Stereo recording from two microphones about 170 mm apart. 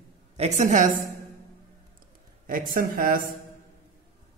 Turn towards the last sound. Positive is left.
turn(degrees=-55)  # may be behind; listen again after turning